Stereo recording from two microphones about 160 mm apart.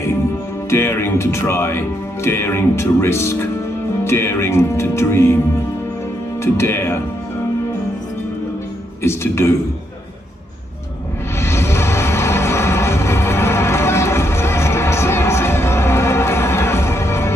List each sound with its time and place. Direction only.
0.7 s speech: 15° left (ahead or behind)
6.4 s speech: 15° left (ahead or behind)
9.0 s speech: 15° left (ahead or behind)
11.3 s music: 15° left (ahead or behind)